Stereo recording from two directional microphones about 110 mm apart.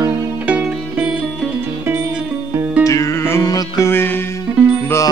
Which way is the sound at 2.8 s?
30° left (ahead or behind).